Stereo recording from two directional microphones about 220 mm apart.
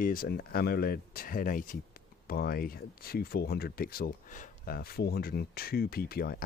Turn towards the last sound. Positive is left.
turn(degrees=45)  # may be behind; listen again after turning